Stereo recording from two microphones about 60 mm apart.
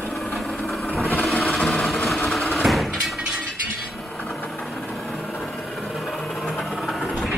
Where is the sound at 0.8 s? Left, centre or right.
Left.